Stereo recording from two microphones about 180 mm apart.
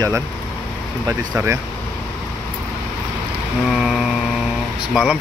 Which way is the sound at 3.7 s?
5° right (ahead or behind).